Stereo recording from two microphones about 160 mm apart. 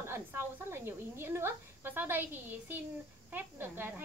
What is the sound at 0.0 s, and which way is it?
A woman's voice, 15° right (ahead or behind).